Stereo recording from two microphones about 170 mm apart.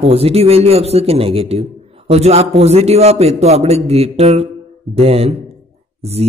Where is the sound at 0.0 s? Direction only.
35° right (ahead or behind).